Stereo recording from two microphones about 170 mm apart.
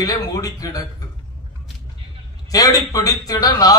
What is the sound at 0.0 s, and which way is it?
Speech, 20° left (ahead or behind).